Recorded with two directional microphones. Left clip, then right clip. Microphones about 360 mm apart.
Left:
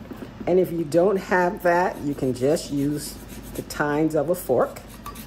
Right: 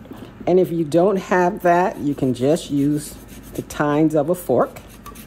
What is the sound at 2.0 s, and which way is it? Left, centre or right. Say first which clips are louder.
Speech: right 4 dB; right.